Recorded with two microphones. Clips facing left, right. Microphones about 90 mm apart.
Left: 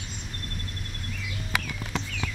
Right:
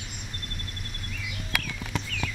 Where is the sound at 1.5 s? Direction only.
25° left (ahead or behind).